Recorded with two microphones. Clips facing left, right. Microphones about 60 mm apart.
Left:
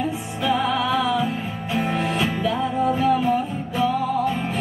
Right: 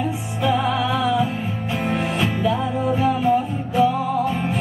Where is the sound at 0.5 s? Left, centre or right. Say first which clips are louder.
Right 1 dB; centre.